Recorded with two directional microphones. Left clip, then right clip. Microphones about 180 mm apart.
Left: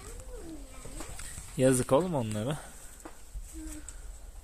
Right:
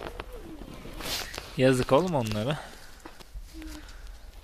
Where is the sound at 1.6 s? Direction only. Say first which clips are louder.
Right 3 dB; 5° right (ahead or behind).